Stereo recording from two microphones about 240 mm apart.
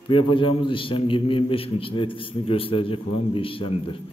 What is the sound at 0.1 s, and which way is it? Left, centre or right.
A man's voice, left.